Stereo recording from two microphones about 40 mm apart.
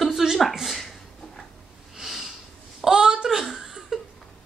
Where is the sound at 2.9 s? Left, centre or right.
Right.